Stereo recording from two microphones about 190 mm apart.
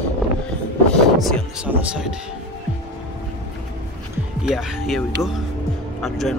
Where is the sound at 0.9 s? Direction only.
5° left (ahead or behind).